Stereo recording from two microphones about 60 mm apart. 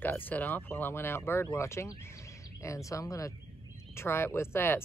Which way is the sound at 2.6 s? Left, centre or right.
Left.